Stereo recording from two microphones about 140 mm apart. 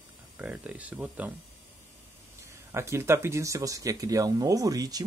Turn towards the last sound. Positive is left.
turn(degrees=-25)  # may be behind; listen again after turning